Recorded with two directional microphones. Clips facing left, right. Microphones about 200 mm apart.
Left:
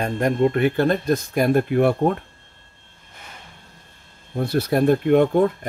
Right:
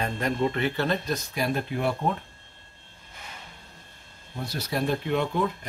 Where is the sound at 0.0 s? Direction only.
50° left (ahead or behind).